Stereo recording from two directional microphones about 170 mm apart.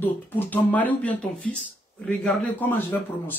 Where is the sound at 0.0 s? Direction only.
10° left (ahead or behind).